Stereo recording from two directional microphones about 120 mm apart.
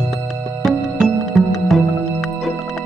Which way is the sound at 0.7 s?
Centre (ahead or behind).